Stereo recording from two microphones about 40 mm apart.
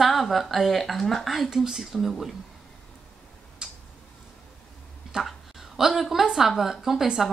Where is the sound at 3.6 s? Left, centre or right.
Right.